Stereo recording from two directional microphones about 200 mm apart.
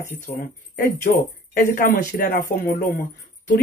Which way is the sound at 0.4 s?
45° left (ahead or behind).